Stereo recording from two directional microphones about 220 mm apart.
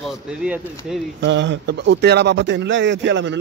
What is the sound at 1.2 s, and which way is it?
Speech, 55° right (ahead or behind).